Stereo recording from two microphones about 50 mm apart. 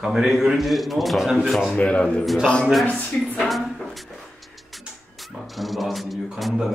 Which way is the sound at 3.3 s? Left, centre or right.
Centre.